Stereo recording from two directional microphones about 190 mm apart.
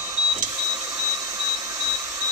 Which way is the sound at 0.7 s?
20° right (ahead or behind).